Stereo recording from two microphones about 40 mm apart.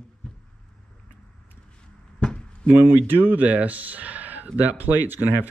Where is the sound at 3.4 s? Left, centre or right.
Right.